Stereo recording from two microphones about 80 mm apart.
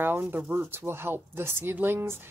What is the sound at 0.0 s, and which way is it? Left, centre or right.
Speech, right.